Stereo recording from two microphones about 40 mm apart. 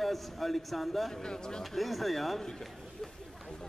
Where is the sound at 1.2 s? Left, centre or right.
Centre.